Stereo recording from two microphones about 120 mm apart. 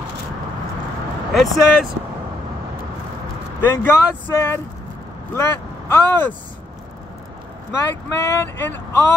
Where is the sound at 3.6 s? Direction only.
20° left (ahead or behind).